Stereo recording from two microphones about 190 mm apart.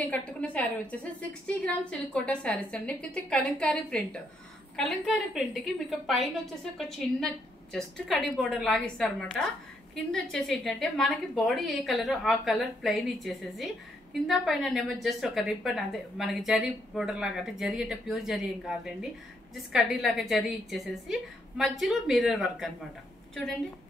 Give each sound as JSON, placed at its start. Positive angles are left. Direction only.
{"t": 0.0, "sound": "a woman's voice", "side_deg": 5}